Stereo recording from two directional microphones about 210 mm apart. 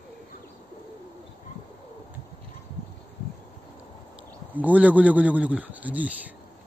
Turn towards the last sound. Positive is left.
turn(degrees=-5)  # may be behind; listen again after turning